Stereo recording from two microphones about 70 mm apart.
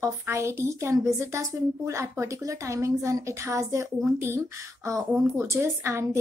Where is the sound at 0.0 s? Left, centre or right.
Right.